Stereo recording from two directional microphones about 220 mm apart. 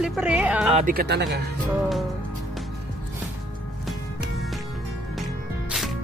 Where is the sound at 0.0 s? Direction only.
5° right (ahead or behind).